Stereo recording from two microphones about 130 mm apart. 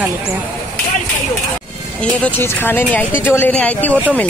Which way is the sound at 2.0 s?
10° left (ahead or behind).